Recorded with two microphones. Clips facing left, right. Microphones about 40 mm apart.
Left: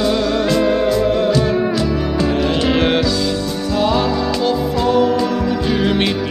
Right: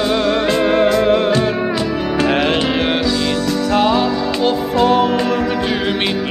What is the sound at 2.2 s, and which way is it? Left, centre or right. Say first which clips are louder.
Music: right 3 dB; right.